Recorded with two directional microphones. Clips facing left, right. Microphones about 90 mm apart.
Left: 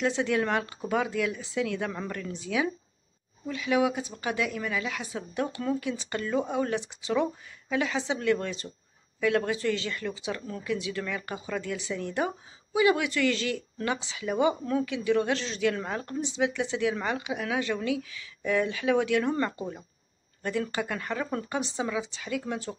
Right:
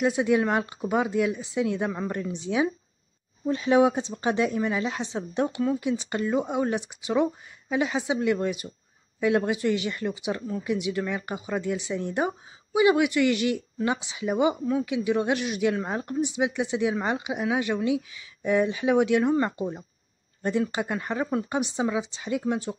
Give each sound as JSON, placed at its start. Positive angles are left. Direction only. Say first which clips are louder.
{"t": 0.0, "sound": "a woman's voice", "louder": "right 4 dB", "side_deg": -15}